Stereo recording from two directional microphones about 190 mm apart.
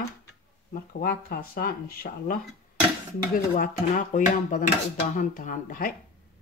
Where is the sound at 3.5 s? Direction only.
45° left (ahead or behind).